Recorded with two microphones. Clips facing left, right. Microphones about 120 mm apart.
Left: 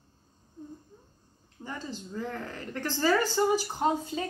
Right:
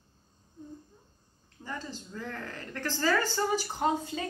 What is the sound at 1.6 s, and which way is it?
A woman's voice, 20° left (ahead or behind).